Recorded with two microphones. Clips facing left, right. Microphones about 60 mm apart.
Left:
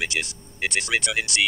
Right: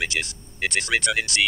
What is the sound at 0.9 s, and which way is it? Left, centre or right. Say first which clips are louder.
Speech: right 3 dB; right.